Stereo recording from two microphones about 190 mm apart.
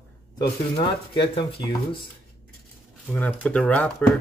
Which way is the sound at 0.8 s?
25° left (ahead or behind).